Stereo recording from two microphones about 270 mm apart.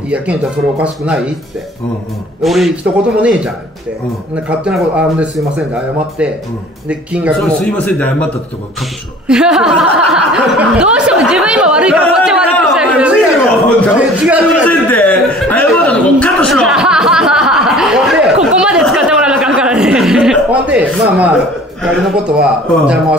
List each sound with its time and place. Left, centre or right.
0.1 s speech: centre
2.4 s speech: centre
6.9 s speech: centre
9.3 s speech: centre
14.7 s chuckle: centre
21.8 s speech: centre